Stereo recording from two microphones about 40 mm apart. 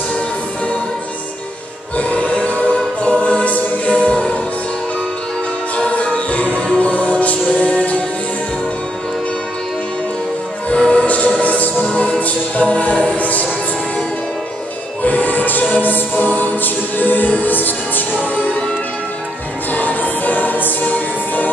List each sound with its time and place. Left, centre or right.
2.0 s music: left
6.0 s music: left
10.7 s music: left
15.0 s music: left
18.3 s music: left
19.7 s music: left